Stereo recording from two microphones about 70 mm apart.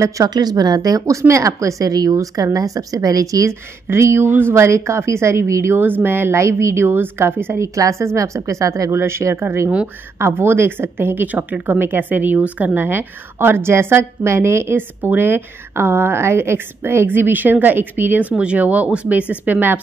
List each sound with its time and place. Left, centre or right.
0.3 s speech: right
3.9 s a woman's voice: right
5.8 s a woman's voice: right
7.6 s a woman's voice: right
8.9 s a woman's voice: right